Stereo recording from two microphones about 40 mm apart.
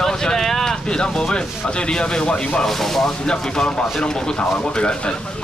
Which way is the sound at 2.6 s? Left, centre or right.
Centre.